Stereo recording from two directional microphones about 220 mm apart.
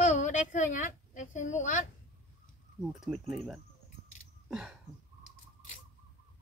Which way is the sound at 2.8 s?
Centre (ahead or behind).